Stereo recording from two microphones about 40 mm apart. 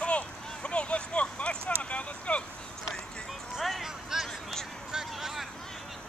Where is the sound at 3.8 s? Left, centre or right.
Centre.